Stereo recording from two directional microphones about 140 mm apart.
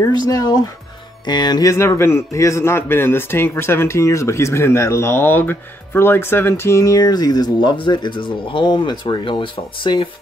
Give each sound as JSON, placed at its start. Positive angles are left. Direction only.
{"t": 0.3, "sound": "a man's voice", "side_deg": 25}